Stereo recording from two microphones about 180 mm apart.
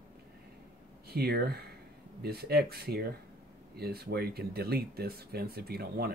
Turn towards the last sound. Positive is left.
turn(degrees=-60)  # may be behind; listen again after turning